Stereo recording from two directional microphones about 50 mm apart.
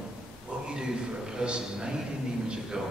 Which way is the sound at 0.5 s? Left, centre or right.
Centre.